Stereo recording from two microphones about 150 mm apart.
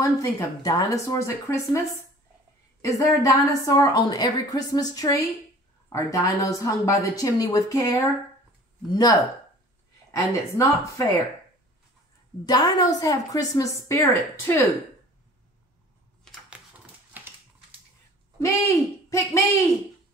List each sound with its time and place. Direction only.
0.0 s a woman's voice: 20° left (ahead or behind)
2.8 s a woman's voice: 20° left (ahead or behind)
12.4 s a woman's voice: 25° left (ahead or behind)
18.4 s a woman's voice: 20° left (ahead or behind)